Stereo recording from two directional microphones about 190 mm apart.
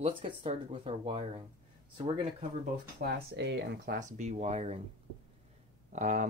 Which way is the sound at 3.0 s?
65° right (ahead or behind).